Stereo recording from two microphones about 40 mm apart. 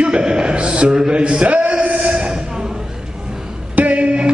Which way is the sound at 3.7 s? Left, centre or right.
Right.